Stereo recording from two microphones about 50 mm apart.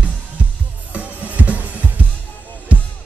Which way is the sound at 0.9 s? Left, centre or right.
Right.